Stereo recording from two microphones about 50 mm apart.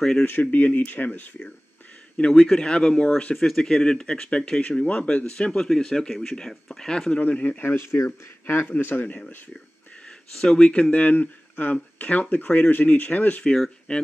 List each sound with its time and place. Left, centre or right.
0.2 s speech: left
2.1 s speech: left
5.6 s speech: centre
6.9 s speech: centre
7.2 s speech: left
7.6 s speech: left
10.0 s a sound: centre
10.6 s speech: left
13.9 s speech: left